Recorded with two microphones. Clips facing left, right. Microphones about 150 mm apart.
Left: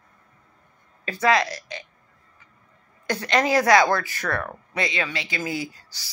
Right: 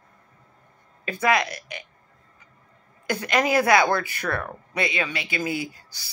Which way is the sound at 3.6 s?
20° right (ahead or behind).